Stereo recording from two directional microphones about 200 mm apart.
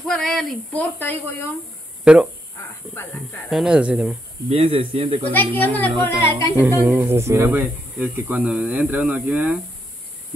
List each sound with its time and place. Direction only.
0.0 s speech: centre (ahead or behind)
2.1 s speech: 5° right (ahead or behind)
3.4 s speech: centre (ahead or behind)
4.5 s speech: 30° right (ahead or behind)
5.6 s music: 10° left (ahead or behind)
6.6 s speech: 10° right (ahead or behind)